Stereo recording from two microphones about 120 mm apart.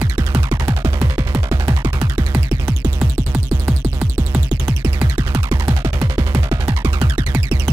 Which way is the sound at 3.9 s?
20° right (ahead or behind).